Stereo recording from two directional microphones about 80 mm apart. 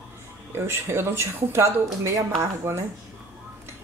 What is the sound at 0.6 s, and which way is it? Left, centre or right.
Speech, right.